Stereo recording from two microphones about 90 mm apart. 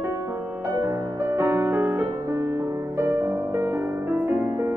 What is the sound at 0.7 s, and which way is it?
Music, 30° right (ahead or behind).